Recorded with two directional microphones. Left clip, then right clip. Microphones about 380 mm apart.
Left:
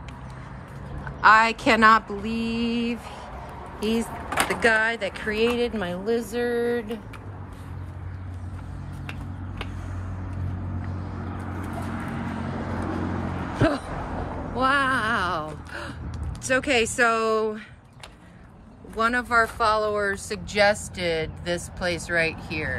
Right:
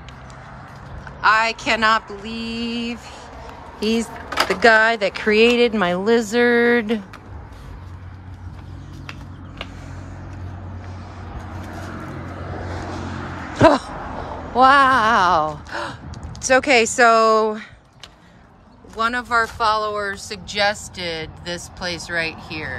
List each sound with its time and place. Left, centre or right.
1.2 s speech: centre
13.6 s a sound: centre
18.9 s speech: centre